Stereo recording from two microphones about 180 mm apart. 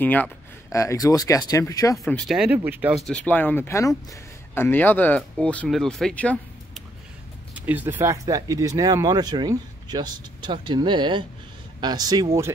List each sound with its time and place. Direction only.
0.0 s speech: 10° left (ahead or behind)
2.1 s speech: centre (ahead or behind)
3.1 s speech: 10° left (ahead or behind)
7.5 s speech: 10° right (ahead or behind)